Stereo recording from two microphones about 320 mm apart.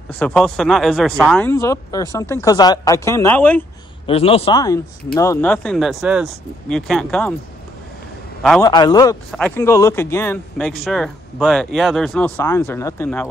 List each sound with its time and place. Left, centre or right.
0.1 s speech: centre
4.0 s speech: centre
8.4 s a man's voice: centre
8.6 s speech: centre